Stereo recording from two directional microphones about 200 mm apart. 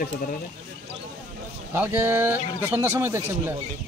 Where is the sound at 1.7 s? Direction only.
10° right (ahead or behind).